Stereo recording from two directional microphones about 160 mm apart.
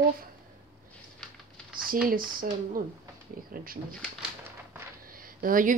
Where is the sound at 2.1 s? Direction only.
60° right (ahead or behind).